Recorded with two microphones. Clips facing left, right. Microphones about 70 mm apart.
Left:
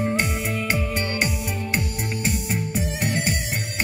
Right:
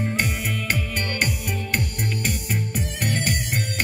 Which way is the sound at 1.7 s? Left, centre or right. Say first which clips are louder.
Even; centre.